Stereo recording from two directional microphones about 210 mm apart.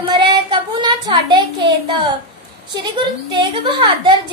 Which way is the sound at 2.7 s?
20° right (ahead or behind).